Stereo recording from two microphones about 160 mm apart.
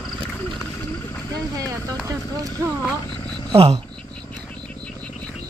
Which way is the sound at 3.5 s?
35° right (ahead or behind).